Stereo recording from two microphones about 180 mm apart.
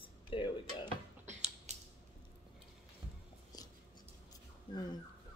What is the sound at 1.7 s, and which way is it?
Scissors, 40° right (ahead or behind).